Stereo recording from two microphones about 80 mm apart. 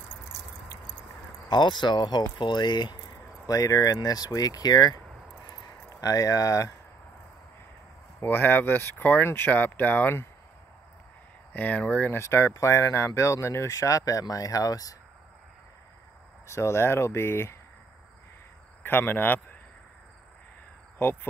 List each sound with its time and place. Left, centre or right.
1.5 s speech: left
3.4 s speech: left
5.9 s speech: left
8.2 s speech: left
11.5 s speech: left
12.1 s speech: left
16.4 s speech: left
18.8 s speech: left
21.0 s speech: left